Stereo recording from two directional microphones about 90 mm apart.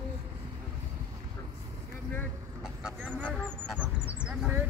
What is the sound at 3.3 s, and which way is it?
Honk, 10° left (ahead or behind).